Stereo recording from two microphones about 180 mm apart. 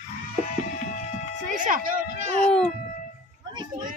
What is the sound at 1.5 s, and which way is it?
Speech, 45° right (ahead or behind).